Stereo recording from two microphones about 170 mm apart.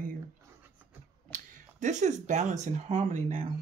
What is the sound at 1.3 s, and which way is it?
Speech, 50° right (ahead or behind).